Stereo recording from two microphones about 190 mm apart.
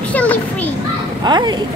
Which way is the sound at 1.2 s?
20° right (ahead or behind).